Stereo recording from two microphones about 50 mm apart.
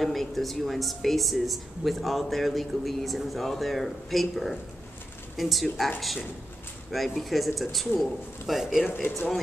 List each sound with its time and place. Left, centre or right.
0.0 s speech: centre
8.9 s speech: left